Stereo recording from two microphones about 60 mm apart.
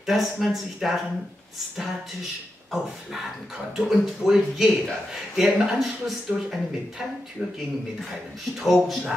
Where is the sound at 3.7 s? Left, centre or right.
Centre.